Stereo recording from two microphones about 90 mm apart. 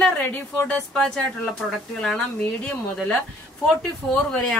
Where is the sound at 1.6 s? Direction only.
5° right (ahead or behind).